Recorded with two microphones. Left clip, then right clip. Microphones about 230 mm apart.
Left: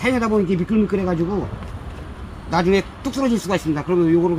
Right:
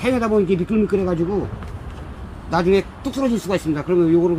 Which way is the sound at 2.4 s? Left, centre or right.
Left.